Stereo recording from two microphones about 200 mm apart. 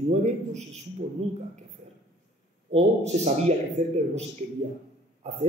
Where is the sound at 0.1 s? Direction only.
35° right (ahead or behind).